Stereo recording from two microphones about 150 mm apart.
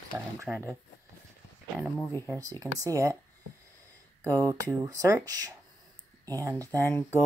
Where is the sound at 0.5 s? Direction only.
5° left (ahead or behind).